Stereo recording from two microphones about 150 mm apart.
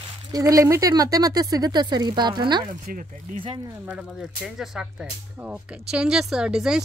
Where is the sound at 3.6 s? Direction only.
20° right (ahead or behind).